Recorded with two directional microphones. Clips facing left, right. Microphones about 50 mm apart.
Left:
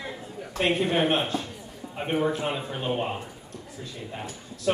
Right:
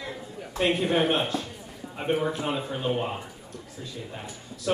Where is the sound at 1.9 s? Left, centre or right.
Centre.